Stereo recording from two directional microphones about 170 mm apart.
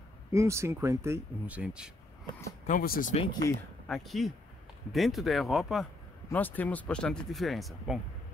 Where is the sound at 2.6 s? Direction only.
55° left (ahead or behind).